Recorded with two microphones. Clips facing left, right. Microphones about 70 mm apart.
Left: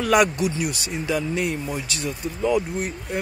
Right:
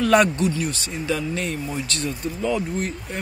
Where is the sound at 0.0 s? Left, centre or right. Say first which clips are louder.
Right 1 dB; centre.